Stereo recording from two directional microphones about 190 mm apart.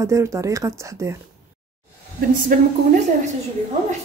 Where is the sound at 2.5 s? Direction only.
40° right (ahead or behind).